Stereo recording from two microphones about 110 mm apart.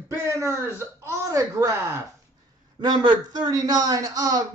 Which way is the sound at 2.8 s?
45° right (ahead or behind).